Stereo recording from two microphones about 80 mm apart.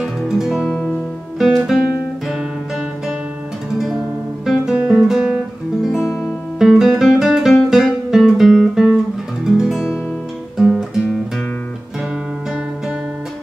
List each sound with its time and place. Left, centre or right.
0.0 s music: centre
0.7 s music: centre
1.4 s music: centre
3.7 s guitar: centre
5.9 s music: left
6.6 s guitar: centre
7.7 s music: centre
9.4 s guitar: centre
10.6 s music: centre